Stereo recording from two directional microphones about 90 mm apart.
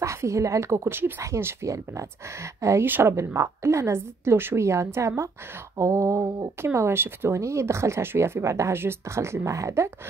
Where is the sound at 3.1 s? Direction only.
35° right (ahead or behind).